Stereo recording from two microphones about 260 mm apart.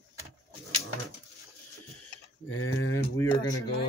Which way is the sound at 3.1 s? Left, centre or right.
Centre.